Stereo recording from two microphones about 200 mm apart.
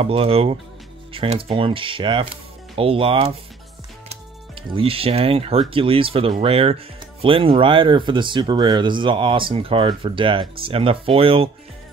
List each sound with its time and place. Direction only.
0.0 s speech: 30° right (ahead or behind)
4.6 s speech: 25° right (ahead or behind)